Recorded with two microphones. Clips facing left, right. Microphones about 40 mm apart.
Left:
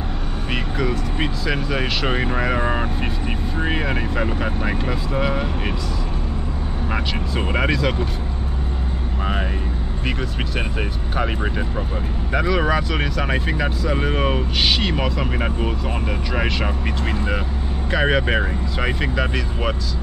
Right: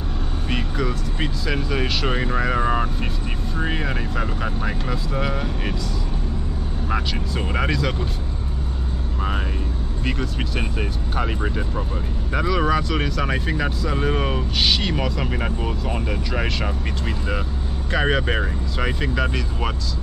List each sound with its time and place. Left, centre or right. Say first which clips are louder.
0.5 s speech: left 2 dB; centre
6.9 s speech: even; centre
10.0 s speech: even; centre
17.9 s speech: left 2 dB; centre